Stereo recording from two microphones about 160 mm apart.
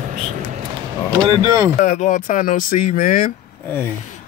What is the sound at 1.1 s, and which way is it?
Speech, 20° right (ahead or behind).